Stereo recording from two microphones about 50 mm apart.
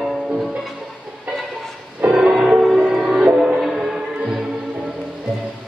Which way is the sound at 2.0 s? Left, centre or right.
Right.